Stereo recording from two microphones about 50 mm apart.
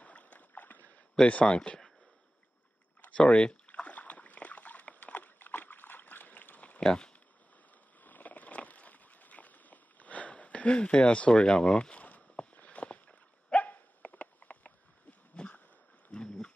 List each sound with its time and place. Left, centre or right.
0.0 s rowboat: left
1.2 s speech: centre
3.0 s rowboat: left
6.8 s speech: centre
8.0 s a sound: left; by 12.0 s centre
12.5 s dog: left
15.3 s a sound: left
16.1 s wild animals: centre